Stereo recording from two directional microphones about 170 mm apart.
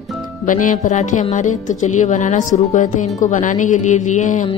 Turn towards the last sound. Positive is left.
turn(degrees=45)  # may be behind; listen again after turning